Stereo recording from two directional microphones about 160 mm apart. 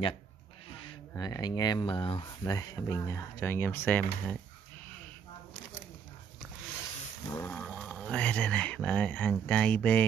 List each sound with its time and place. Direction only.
1.1 s speech: 25° left (ahead or behind)
7.2 s a sound: 15° left (ahead or behind)
7.6 s speech: 10° left (ahead or behind)